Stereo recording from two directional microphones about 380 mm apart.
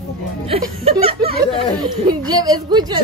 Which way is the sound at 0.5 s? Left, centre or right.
Centre.